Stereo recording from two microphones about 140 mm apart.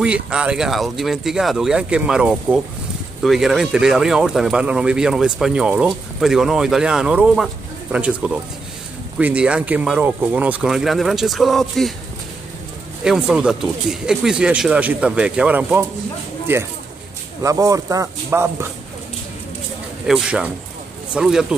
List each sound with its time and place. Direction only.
0.0 s speech: 5° right (ahead or behind)
13.0 s speech: 5° right (ahead or behind)
20.1 s speech: 5° right (ahead or behind)